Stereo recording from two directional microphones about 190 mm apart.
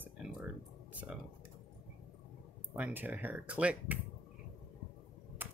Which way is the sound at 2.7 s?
10° right (ahead or behind).